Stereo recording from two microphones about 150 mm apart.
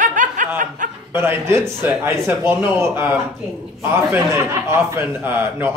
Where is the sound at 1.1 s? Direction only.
15° right (ahead or behind).